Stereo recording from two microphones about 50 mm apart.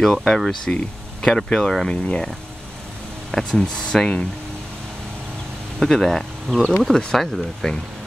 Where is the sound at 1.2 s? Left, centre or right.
Centre.